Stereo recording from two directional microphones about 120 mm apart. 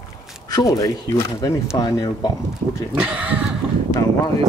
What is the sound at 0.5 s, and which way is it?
Speech, 30° left (ahead or behind).